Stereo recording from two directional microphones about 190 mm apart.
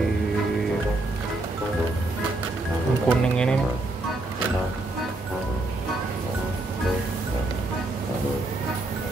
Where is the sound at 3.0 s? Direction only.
5° left (ahead or behind).